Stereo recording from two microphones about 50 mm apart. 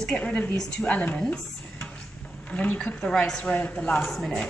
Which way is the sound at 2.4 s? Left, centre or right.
Left.